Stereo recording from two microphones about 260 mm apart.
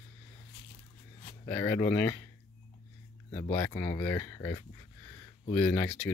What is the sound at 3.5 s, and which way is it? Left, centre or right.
Speech, centre.